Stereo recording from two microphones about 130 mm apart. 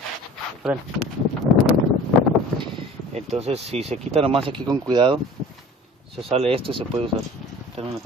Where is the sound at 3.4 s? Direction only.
55° right (ahead or behind); by 5.2 s 35° right (ahead or behind).